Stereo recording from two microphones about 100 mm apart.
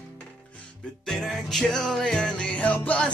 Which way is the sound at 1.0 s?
Centre (ahead or behind).